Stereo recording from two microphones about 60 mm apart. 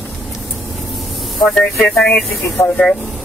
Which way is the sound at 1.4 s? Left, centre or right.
Centre.